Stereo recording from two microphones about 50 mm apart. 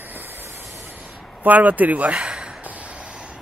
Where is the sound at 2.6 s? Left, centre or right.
Right.